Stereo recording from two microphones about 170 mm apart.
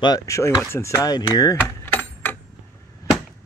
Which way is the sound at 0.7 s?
15° left (ahead or behind).